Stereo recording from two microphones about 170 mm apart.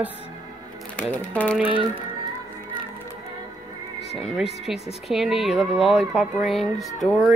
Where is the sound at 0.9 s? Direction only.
10° left (ahead or behind).